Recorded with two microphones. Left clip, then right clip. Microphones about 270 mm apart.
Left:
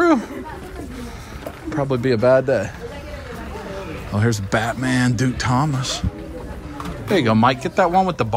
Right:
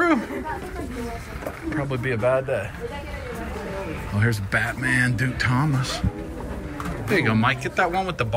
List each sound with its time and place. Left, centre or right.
1.7 s speech: centre
4.2 s speech: centre
7.1 s speech: centre